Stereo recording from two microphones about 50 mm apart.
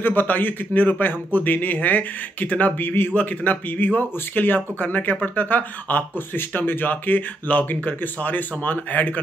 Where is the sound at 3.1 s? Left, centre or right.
Left.